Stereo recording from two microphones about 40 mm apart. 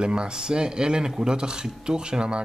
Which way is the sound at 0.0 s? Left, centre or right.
Right.